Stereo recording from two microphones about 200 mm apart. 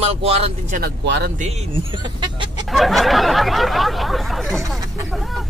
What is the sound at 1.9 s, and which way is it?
Chicken, 20° right (ahead or behind).